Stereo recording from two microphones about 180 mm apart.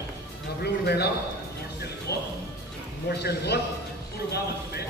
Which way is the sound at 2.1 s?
20° left (ahead or behind).